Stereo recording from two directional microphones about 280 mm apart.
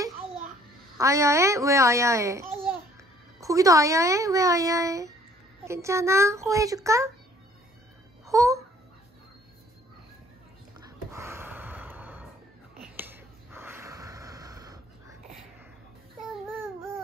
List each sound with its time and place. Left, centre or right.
0.9 s a child's voice: centre
8.3 s babbling: centre
11.1 s gasp: centre
12.9 s snort: centre